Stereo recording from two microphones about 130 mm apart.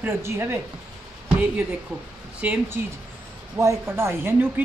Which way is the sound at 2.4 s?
10° right (ahead or behind).